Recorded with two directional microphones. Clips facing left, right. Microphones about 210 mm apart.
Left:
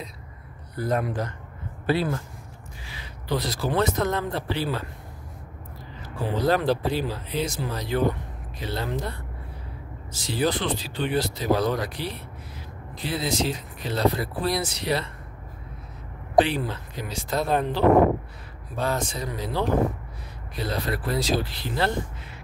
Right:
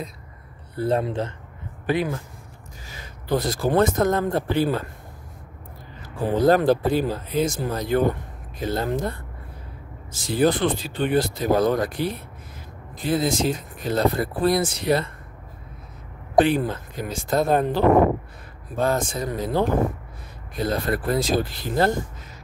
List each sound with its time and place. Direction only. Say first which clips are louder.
0.7 s speech: right 3 dB; 30° right (ahead or behind)
2.8 s speech: right 2 dB; 45° right (ahead or behind)
6.0 s speech: right 5 dB; 50° right (ahead or behind)
16.3 s speech: right 3 dB; 50° right (ahead or behind)